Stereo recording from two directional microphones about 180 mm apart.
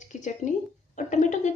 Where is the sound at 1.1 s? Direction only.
40° left (ahead or behind).